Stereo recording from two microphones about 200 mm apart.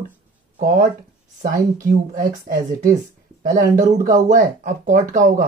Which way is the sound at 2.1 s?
40° right (ahead or behind).